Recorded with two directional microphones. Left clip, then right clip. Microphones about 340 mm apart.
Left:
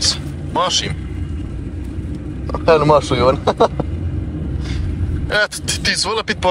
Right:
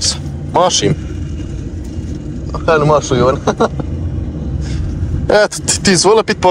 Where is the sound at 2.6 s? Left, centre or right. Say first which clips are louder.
Right 1 dB; centre.